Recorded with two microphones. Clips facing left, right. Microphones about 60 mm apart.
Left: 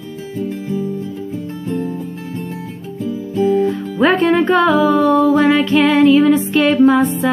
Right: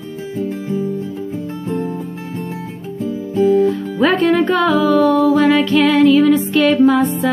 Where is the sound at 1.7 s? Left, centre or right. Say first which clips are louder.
Even; right.